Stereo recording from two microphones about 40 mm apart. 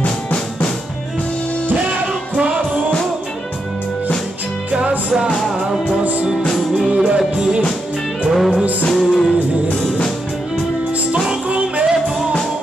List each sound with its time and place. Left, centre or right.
0.0 s drum: left
2.3 s music: right
4.7 s music: centre
6.9 s music: right
8.3 s music: centre
11.4 s music: right
11.8 s music: right